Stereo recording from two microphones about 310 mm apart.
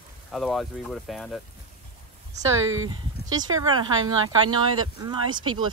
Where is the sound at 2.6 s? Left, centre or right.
Right.